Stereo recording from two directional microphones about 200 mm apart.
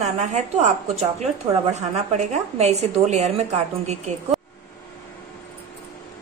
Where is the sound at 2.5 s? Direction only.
35° right (ahead or behind).